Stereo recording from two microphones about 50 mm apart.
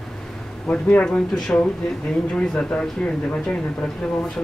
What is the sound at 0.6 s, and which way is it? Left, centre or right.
Speech, left.